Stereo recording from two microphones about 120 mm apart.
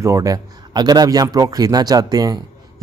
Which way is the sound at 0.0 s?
30° right (ahead or behind).